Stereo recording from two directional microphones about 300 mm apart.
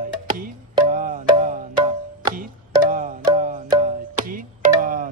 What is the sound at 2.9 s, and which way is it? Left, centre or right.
Tabla, right.